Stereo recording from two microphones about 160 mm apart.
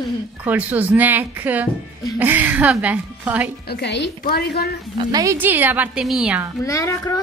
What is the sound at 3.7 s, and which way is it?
A woman's voice, 90° left.